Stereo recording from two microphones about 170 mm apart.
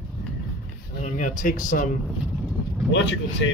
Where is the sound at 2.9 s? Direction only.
90° left.